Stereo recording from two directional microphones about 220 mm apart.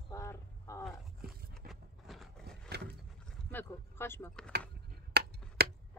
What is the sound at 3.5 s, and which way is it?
Speech, 10° left (ahead or behind).